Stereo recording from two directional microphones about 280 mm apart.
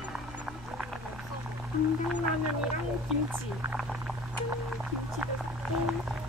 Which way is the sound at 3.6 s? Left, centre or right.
Centre.